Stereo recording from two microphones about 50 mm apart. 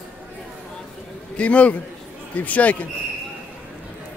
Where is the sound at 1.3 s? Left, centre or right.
Left.